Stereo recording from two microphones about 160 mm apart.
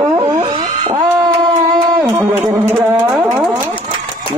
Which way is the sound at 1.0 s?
25° right (ahead or behind).